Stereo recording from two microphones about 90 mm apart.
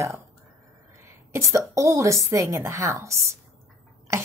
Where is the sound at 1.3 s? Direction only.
35° right (ahead or behind).